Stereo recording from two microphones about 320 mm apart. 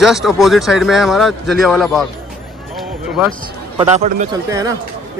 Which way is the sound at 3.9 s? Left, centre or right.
Right.